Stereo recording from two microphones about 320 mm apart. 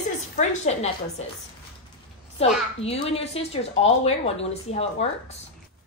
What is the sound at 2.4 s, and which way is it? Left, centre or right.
A woman's voice, centre.